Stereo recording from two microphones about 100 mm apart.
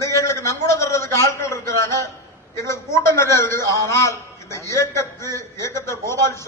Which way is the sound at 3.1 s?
30° left (ahead or behind).